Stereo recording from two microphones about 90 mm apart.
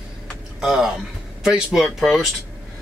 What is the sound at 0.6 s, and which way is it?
Speech, 5° right (ahead or behind).